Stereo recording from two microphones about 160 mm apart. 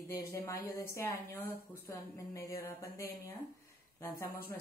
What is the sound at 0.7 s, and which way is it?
Speech, 20° left (ahead or behind).